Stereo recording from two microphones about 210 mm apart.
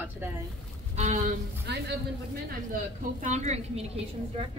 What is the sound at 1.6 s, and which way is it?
Speech, 50° right (ahead or behind).